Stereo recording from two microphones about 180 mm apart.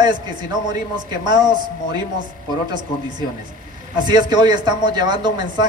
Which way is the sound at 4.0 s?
25° right (ahead or behind).